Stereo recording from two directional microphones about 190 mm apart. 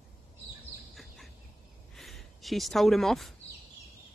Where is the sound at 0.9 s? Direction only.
Centre (ahead or behind).